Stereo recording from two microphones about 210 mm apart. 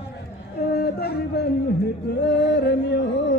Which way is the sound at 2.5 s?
55° left (ahead or behind).